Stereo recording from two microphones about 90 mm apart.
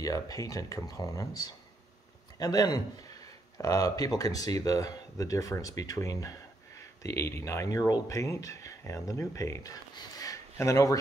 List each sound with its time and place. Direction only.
0.0 s speech: 40° left (ahead or behind)